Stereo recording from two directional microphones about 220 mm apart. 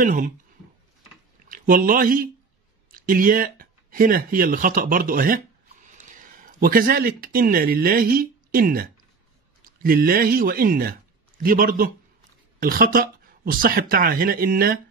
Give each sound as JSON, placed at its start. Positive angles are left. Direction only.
{"t": 0.0, "sound": "speech", "side_deg": -40}
{"t": 1.5, "sound": "speech", "side_deg": -40}